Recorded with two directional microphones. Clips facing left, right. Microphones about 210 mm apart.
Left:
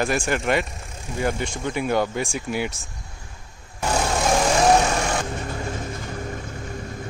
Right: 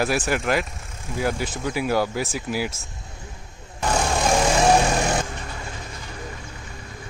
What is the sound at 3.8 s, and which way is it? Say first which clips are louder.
Vehicle: even; 10° left (ahead or behind).